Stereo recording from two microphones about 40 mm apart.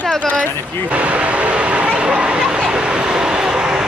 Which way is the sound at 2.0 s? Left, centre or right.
Right.